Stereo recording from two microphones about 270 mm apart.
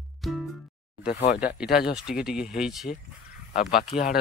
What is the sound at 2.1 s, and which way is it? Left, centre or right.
Speech, centre.